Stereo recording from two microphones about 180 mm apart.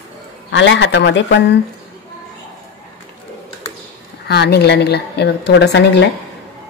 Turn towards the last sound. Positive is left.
turn(degrees=75)  # may be behind; listen again after turning